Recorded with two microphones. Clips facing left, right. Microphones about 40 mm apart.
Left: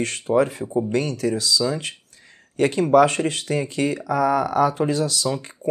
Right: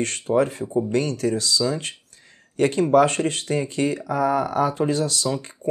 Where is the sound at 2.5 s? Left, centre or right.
Left.